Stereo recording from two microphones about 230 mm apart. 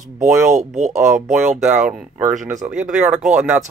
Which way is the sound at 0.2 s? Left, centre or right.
Right.